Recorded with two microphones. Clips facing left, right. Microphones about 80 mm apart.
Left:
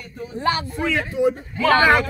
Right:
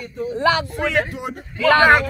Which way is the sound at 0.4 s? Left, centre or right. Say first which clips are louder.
Right 3 dB; right.